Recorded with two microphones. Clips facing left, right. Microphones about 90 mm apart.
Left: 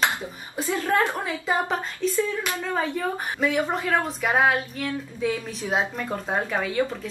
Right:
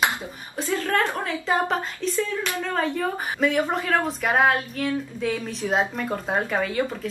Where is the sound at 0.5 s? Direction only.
15° left (ahead or behind).